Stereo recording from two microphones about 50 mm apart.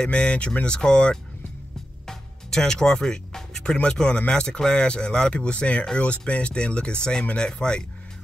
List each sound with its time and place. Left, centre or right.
0.0 s speech: left
2.0 s music: centre
3.9 s speech: centre